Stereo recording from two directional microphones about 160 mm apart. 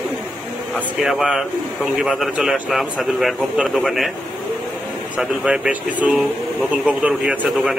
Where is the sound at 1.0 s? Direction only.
Centre (ahead or behind).